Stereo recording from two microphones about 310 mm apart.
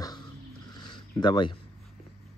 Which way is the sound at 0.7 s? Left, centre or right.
Centre.